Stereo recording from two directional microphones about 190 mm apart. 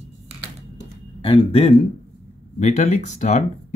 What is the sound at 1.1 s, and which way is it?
Speech, 25° left (ahead or behind).